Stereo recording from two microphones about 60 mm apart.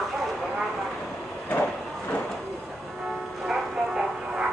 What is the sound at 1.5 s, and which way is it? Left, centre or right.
Vehicle, left.